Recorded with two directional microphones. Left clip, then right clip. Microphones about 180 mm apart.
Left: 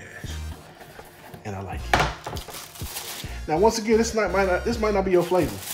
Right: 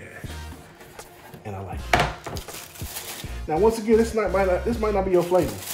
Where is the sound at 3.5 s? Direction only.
20° left (ahead or behind).